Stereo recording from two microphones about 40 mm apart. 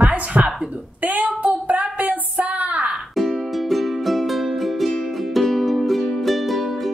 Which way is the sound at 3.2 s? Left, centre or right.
Centre.